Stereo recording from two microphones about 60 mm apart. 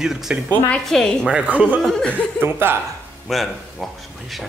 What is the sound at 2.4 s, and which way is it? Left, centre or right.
Speech, right.